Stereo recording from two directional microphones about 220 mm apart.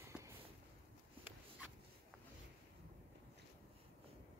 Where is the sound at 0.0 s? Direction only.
10° right (ahead or behind).